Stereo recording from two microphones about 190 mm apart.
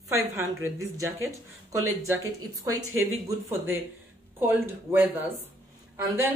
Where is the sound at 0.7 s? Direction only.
15° right (ahead or behind).